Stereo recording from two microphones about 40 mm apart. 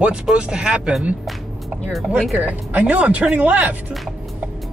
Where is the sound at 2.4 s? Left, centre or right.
Right.